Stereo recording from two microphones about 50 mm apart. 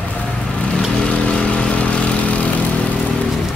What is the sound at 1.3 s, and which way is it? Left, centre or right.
Vehicle, left.